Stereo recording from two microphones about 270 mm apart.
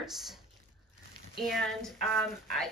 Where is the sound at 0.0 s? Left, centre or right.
Centre.